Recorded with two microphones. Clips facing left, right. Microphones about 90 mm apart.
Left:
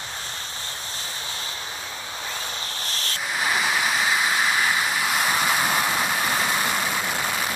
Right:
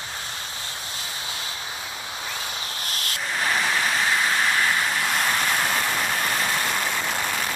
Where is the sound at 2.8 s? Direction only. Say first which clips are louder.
Even; 30° left (ahead or behind).